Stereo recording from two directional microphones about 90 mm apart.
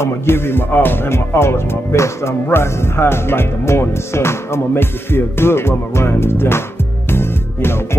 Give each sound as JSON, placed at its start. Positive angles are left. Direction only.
{"t": 0.0, "sound": "speech", "side_deg": 25}
{"t": 7.1, "sound": "music", "side_deg": 25}